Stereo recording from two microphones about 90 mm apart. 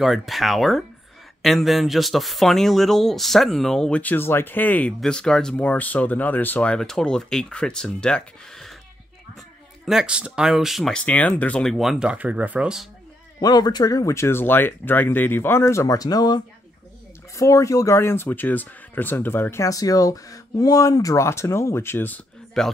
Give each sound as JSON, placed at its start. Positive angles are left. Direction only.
{"t": 0.0, "sound": "speech", "side_deg": 0}
{"t": 4.0, "sound": "speech", "side_deg": 25}
{"t": 9.8, "sound": "speech", "side_deg": -5}
{"t": 10.9, "sound": "speech", "side_deg": 10}
{"t": 11.7, "sound": "speech", "side_deg": -5}
{"t": 13.4, "sound": "speech", "side_deg": 45}
{"t": 17.4, "sound": "speech", "side_deg": 35}
{"t": 19.6, "sound": "speech", "side_deg": 40}
{"t": 22.6, "sound": "speech", "side_deg": 5}